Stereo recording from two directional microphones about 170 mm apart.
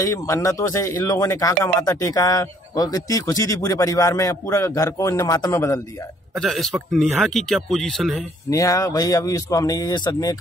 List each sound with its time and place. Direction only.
0.0 s speech: 20° left (ahead or behind)
6.3 s speech: centre (ahead or behind)
8.5 s speech: 20° left (ahead or behind)